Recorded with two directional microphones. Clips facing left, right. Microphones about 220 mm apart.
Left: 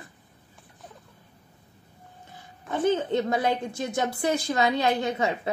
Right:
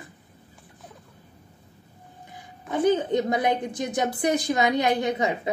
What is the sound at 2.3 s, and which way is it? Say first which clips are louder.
Speech: right 3 dB; 15° right (ahead or behind).